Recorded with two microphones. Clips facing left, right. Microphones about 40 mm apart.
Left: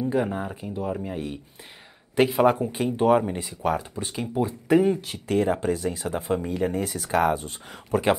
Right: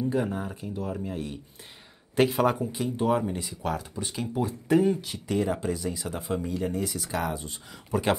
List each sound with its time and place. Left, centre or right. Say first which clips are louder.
0.0 s speech: left 3 dB; left
2.1 s speech: left 3 dB; centre
2.6 s speech: left 5 dB; left
3.3 s speech: left 5 dB; centre; by 8.0 s left